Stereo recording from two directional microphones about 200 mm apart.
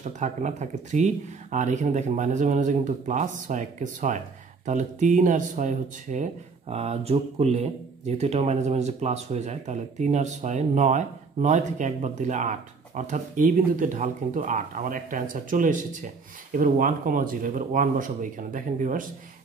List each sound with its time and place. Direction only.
0.0 s speech: 35° right (ahead or behind)